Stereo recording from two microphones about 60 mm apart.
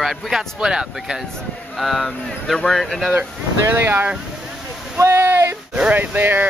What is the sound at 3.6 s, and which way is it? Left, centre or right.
Speech, right.